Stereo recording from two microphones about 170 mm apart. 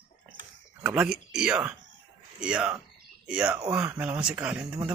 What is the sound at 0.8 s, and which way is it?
Speech, 10° right (ahead or behind).